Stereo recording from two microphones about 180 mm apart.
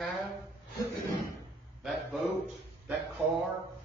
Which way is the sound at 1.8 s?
Centre (ahead or behind).